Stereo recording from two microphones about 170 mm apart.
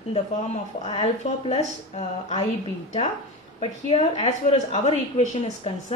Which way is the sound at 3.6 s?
40° left (ahead or behind).